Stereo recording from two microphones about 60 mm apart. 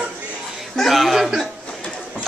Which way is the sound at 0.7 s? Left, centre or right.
Centre.